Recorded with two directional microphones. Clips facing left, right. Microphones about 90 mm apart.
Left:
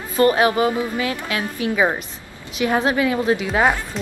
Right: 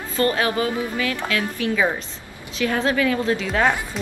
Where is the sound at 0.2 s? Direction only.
20° left (ahead or behind).